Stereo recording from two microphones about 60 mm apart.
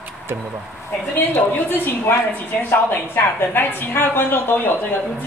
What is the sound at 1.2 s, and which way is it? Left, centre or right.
A woman's voice, left.